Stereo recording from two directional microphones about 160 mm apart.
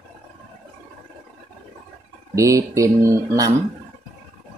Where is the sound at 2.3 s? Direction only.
20° right (ahead or behind).